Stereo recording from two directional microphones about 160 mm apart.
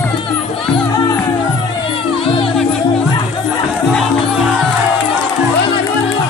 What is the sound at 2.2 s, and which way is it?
Music, 35° left (ahead or behind).